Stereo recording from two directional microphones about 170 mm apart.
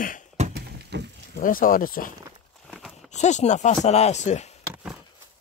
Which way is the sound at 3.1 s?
45° left (ahead or behind).